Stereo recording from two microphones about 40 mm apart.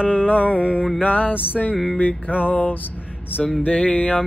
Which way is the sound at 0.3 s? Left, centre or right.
Left.